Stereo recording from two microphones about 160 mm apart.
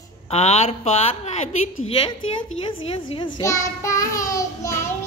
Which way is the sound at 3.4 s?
20° left (ahead or behind).